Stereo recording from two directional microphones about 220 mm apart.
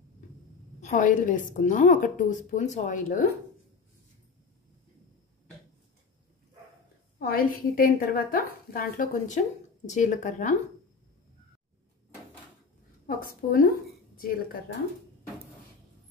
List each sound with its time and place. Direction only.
0.7 s a woman's voice: 35° left (ahead or behind)
7.2 s a woman's voice: 40° left (ahead or behind)
13.0 s a woman's voice: 40° left (ahead or behind)